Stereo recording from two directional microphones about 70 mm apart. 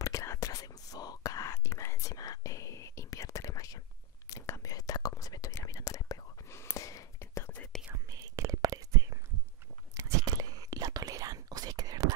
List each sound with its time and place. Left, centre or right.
0.0 s whispering: left
6.5 s whispering: left
7.9 s whispering: right